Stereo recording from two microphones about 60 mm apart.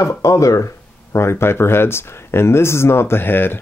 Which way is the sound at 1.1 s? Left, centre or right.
Left.